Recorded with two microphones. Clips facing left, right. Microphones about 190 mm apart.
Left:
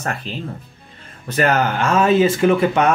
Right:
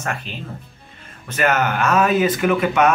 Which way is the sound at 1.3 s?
35° left (ahead or behind).